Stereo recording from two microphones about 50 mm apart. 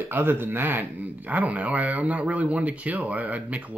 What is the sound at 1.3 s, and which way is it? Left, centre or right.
Speech, right.